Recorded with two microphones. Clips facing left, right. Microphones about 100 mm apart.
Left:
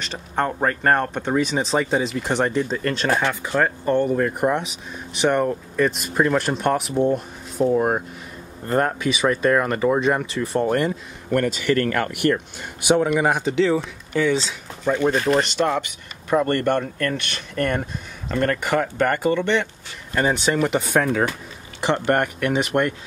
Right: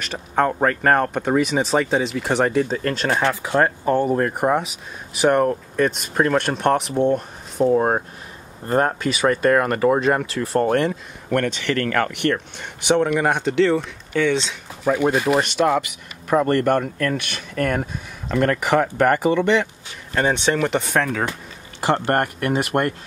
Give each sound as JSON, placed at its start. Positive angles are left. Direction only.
{"t": 0.1, "sound": "speech", "side_deg": -5}
{"t": 3.2, "sound": "speech", "side_deg": -25}
{"t": 3.8, "sound": "speech", "side_deg": -5}
{"t": 4.1, "sound": "speech", "side_deg": -45}
{"t": 4.6, "sound": "speech", "side_deg": -5}
{"t": 7.7, "sound": "speech", "side_deg": -30}
{"t": 9.1, "sound": "speech", "side_deg": 0}
{"t": 14.9, "sound": "speech", "side_deg": -10}
{"t": 21.9, "sound": "speech", "side_deg": -45}